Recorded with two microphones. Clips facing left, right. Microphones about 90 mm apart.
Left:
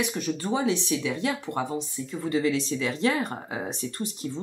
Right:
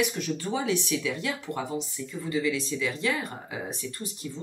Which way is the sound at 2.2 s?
50° left (ahead or behind).